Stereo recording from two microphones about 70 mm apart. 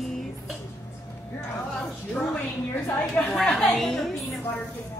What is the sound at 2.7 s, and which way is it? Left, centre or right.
Speech, left.